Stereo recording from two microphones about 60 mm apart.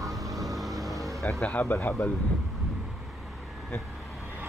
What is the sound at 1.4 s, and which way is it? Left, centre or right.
Speech, left.